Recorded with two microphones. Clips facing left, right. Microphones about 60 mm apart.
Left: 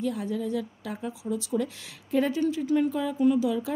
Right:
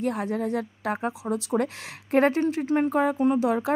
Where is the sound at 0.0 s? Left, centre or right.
Right.